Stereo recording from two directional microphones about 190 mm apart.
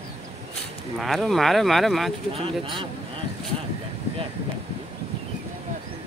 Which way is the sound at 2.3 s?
30° right (ahead or behind).